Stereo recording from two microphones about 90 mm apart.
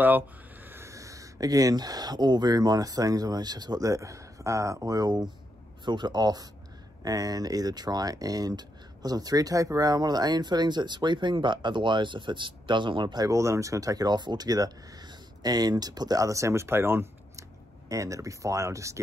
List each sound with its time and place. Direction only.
0.7 s speech: 30° right (ahead or behind); by 13.3 s 55° right (ahead or behind)
13.3 s speech: 35° right (ahead or behind)
17.8 s speech: 40° right (ahead or behind)